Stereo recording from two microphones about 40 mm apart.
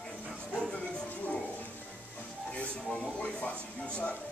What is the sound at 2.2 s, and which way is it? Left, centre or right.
Music, left.